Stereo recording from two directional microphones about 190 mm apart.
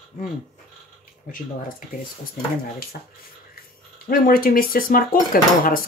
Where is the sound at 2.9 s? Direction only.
50° left (ahead or behind).